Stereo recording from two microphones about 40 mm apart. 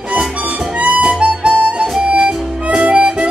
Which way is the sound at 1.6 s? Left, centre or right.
Right.